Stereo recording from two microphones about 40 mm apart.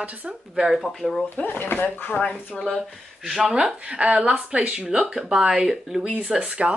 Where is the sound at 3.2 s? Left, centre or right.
Centre.